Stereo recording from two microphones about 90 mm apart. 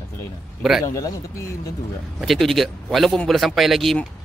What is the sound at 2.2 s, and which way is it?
Speech, centre (ahead or behind).